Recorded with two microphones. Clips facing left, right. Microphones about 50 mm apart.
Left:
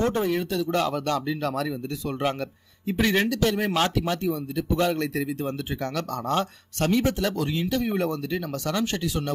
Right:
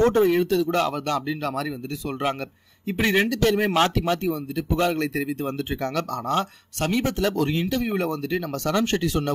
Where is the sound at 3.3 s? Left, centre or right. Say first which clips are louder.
Right 2 dB; right.